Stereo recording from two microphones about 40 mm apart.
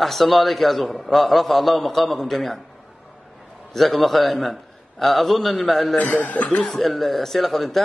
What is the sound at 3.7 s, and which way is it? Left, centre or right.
Speech, centre.